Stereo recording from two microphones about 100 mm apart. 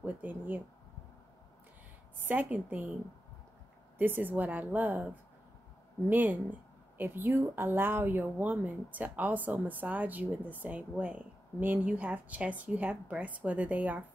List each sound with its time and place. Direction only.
0.0 s speech: 20° right (ahead or behind)
2.2 s speech: 15° right (ahead or behind)
4.0 s a woman's voice: 20° right (ahead or behind)
6.0 s speech: 20° right (ahead or behind)